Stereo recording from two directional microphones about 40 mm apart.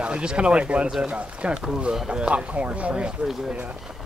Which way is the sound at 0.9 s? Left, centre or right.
Centre.